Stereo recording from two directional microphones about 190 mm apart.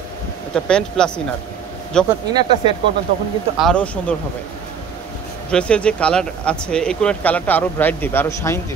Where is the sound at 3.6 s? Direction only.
5° left (ahead or behind).